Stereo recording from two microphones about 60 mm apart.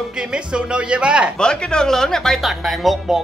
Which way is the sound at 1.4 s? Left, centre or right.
Centre.